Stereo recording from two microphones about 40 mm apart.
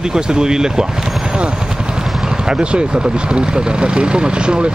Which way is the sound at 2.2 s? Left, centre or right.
Centre.